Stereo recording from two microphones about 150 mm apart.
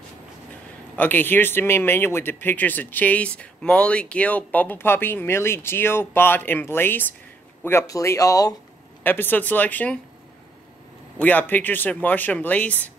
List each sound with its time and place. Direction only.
0.9 s speech: 10° left (ahead or behind)
11.1 s speech: 10° left (ahead or behind)